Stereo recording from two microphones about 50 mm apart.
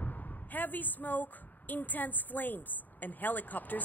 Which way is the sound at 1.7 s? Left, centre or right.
Left.